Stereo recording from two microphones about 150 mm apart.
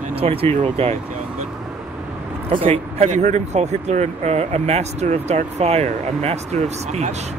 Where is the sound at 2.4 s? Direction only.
40° right (ahead or behind).